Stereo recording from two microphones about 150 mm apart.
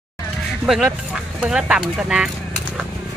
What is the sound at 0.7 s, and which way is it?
Speech, 5° right (ahead or behind).